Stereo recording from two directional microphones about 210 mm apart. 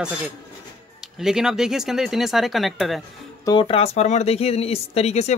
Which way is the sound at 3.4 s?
25° left (ahead or behind).